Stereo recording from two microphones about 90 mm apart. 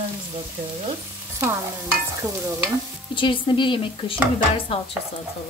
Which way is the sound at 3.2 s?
65° left (ahead or behind).